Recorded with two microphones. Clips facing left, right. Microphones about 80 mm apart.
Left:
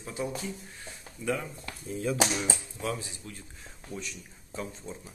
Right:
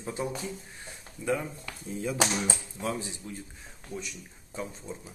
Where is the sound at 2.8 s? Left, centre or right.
Right.